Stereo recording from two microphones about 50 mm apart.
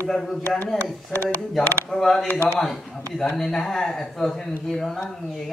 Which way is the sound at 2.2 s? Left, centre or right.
Left.